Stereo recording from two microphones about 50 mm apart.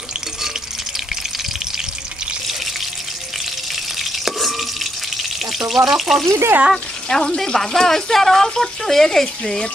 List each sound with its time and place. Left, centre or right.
3.9 s drip: centre
5.6 s speech: centre
6.2 s speech: right
7.1 s speech: centre